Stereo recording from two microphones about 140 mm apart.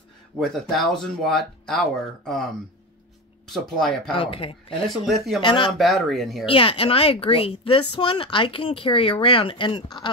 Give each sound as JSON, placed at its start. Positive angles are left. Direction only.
{"t": 0.4, "sound": "speech", "side_deg": 0}
{"t": 3.4, "sound": "speech", "side_deg": 0}
{"t": 4.2, "sound": "speech", "side_deg": 40}
{"t": 4.8, "sound": "speech", "side_deg": 0}
{"t": 5.4, "sound": "speech", "side_deg": 35}
{"t": 5.8, "sound": "speech", "side_deg": 0}
{"t": 6.4, "sound": "speech", "side_deg": 40}